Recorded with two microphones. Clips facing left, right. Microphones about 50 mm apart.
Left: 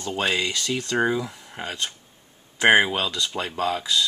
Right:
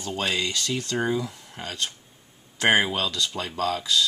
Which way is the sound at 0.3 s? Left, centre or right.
Left.